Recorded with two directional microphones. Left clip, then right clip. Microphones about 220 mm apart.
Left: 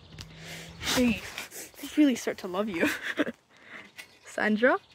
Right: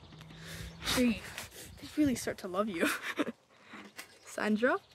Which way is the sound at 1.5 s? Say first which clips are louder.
Left 8 dB; 25° left (ahead or behind).